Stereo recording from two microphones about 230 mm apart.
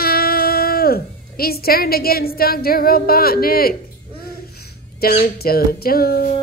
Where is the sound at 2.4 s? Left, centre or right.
Left.